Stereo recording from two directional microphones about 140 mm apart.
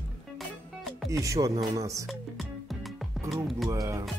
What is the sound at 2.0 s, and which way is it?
Music, centre (ahead or behind).